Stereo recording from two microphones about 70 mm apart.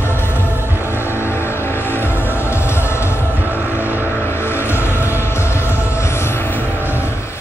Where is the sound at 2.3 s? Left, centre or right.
Left.